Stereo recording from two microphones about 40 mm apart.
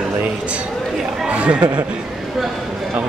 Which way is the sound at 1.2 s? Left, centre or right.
Right.